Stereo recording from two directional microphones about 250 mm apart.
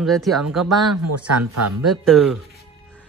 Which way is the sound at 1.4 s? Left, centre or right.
Right.